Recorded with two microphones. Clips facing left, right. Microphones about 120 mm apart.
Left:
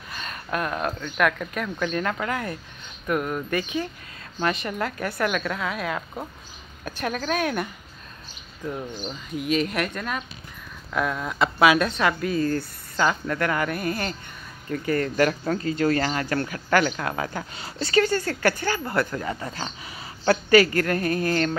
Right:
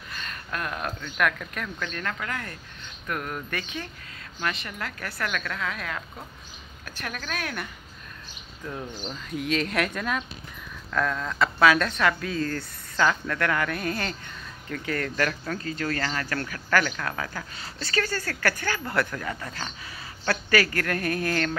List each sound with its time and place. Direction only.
0.1 s speech: 15° left (ahead or behind)
4.4 s a woman's voice: 30° left (ahead or behind)
9.0 s speech: 5° left (ahead or behind)
10.9 s a woman's voice: 10° left (ahead or behind)